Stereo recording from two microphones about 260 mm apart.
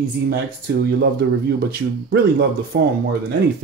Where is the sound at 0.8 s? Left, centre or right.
Right.